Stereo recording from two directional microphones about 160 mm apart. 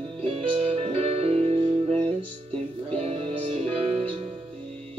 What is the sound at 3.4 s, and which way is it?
Music, 35° right (ahead or behind).